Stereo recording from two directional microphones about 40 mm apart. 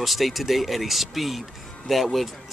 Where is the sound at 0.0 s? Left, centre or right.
Centre.